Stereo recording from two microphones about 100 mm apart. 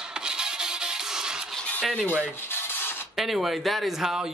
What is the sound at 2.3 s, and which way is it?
Rub, 20° left (ahead or behind).